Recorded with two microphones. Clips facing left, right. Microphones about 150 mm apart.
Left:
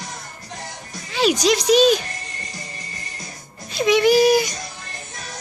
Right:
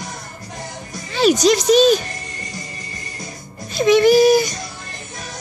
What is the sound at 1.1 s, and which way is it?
Speech, centre (ahead or behind).